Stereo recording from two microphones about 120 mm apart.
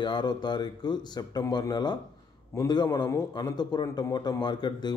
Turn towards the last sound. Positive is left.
turn(degrees=40)  # may be behind; listen again after turning